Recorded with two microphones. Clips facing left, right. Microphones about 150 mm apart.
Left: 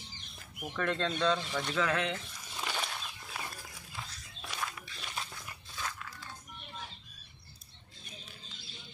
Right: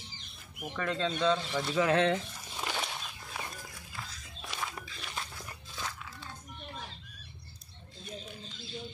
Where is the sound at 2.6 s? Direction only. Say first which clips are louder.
Right 1 dB; 10° right (ahead or behind).